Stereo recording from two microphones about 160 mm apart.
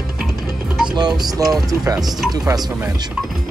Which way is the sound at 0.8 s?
25° right (ahead or behind).